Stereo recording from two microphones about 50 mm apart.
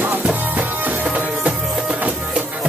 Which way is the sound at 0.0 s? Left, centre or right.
Right.